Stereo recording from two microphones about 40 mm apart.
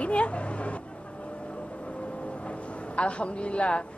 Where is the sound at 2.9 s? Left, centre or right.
Left.